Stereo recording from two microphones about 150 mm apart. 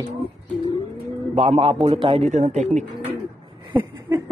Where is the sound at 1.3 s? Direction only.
45° right (ahead or behind).